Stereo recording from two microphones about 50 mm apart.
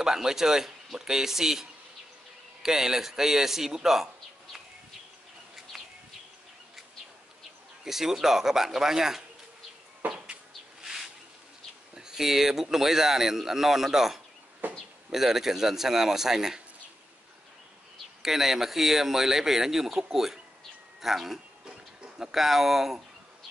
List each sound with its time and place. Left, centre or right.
0.0 s a man's voice: centre
7.8 s speech: centre
10.0 s insect: right
10.8 s a sound: centre
11.9 s speech: centre
14.6 s a sound: right
15.0 s speech: centre
18.2 s speech: centre
21.6 s a sound: right
22.3 s speech: centre